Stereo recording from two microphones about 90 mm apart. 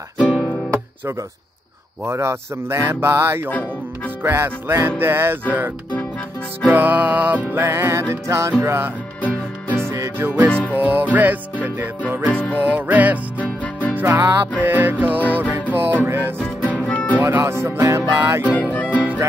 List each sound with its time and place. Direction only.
0.2 s music: 15° right (ahead or behind)
2.0 s music: 30° right (ahead or behind)
3.4 s speech: 15° left (ahead or behind)
4.2 s music: 25° right (ahead or behind)
6.7 s music: 20° right (ahead or behind)
9.2 s music: 15° left (ahead or behind)
9.8 s music: 30° right (ahead or behind)
10.5 s music: 15° left (ahead or behind)
10.8 s music: 20° right (ahead or behind)
13.4 s music: 15° left (ahead or behind)
13.9 s music: 25° right (ahead or behind)
16.7 s music: 15° left (ahead or behind)
17.2 s speech: 25° right (ahead or behind)
18.6 s music: 15° left (ahead or behind)